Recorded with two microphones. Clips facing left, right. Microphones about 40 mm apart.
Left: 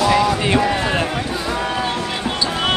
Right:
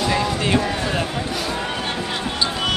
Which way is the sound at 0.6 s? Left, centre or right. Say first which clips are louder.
Left 4 dB; left.